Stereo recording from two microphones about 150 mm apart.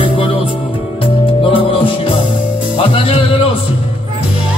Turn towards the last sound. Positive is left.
turn(degrees=40)  # may be behind; listen again after turning